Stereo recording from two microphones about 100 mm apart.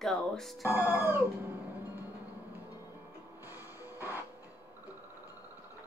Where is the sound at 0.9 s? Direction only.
20° right (ahead or behind).